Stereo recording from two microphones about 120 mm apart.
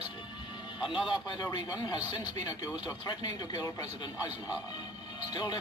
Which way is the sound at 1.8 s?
35° left (ahead or behind).